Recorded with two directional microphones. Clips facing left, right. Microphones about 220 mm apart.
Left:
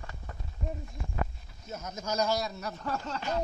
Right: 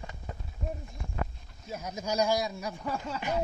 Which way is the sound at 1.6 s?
10° right (ahead or behind).